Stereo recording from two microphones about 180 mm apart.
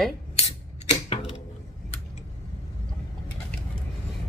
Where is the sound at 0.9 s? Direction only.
35° left (ahead or behind).